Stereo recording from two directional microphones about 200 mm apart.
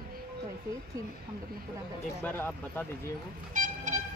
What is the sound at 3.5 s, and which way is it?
Vehicle, 40° right (ahead or behind).